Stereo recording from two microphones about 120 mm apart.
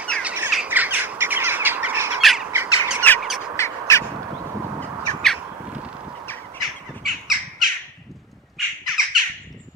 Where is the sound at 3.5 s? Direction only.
25° left (ahead or behind).